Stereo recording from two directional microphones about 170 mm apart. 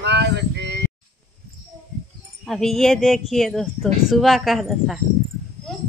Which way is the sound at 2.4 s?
Centre (ahead or behind).